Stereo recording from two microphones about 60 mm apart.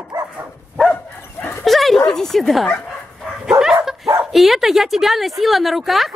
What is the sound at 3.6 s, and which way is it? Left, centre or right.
Dog, centre.